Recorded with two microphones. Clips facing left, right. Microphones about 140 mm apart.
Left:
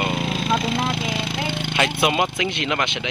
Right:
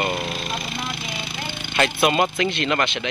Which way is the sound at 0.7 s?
90° left.